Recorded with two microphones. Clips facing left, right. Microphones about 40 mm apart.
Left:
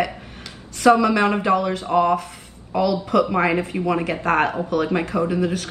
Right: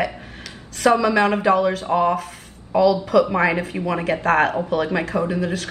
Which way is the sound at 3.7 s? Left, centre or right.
Centre.